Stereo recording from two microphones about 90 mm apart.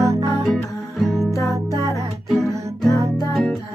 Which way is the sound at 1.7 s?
35° right (ahead or behind).